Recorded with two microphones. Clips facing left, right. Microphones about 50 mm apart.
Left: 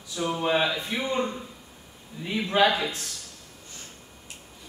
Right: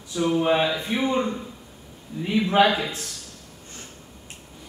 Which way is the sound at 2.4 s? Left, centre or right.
Right.